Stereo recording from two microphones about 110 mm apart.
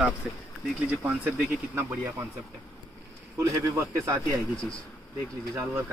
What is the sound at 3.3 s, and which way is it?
Speech, 30° right (ahead or behind).